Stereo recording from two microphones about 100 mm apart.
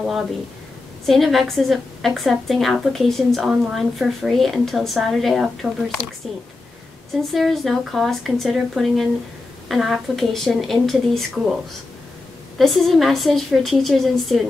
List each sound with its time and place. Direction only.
1.0 s a woman's voice: centre (ahead or behind)
7.2 s a woman's voice: centre (ahead or behind)
12.5 s a woman's voice: centre (ahead or behind)